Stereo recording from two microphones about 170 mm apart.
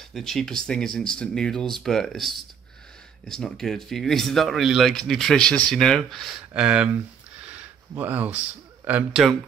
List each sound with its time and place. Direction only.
0.1 s speech: centre (ahead or behind)
7.4 s a sound: 10° right (ahead or behind)
8.8 s speech: 5° right (ahead or behind)